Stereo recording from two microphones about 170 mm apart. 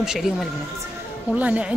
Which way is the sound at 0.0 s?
5° right (ahead or behind).